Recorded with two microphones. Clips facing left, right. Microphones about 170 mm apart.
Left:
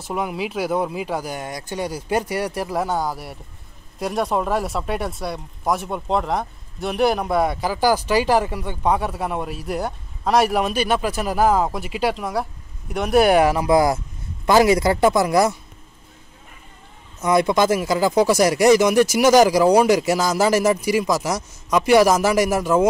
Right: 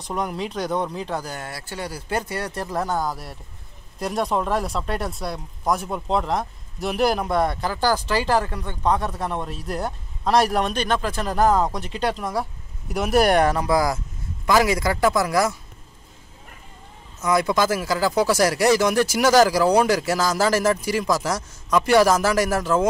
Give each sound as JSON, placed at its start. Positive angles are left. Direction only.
{"t": 0.0, "sound": "speech", "side_deg": 5}
{"t": 13.7, "sound": "speech", "side_deg": 25}
{"t": 17.2, "sound": "speech", "side_deg": 25}